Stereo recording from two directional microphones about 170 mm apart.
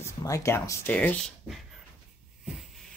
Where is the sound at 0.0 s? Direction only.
20° left (ahead or behind).